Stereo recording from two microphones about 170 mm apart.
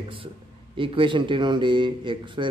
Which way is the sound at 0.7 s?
30° right (ahead or behind).